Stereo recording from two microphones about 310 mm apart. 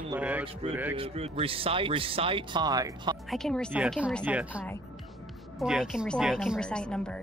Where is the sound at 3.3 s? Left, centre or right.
Centre.